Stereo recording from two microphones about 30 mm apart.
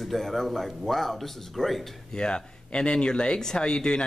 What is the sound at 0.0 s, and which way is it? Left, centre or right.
A man's voice, centre.